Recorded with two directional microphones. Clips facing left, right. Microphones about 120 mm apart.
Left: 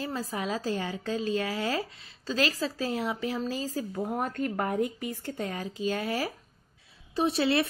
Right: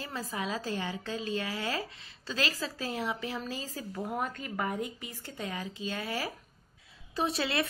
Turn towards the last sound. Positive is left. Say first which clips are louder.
# left 5 dB
turn(degrees=30)  # may be behind; listen again after turning